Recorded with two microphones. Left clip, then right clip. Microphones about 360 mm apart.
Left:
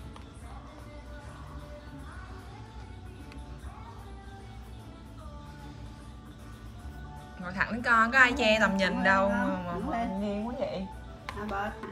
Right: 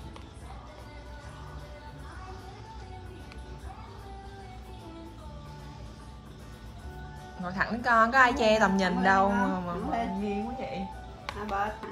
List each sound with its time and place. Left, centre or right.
7.4 s a woman's voice: centre